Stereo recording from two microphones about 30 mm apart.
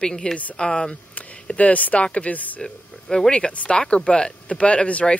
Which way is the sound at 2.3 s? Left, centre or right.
Left.